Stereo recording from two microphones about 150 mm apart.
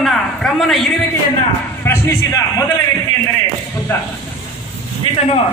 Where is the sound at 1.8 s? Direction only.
15° left (ahead or behind).